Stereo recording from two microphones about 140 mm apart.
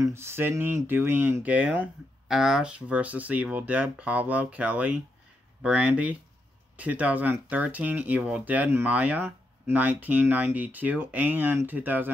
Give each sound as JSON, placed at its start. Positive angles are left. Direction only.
{"t": 0.0, "sound": "speech", "side_deg": -20}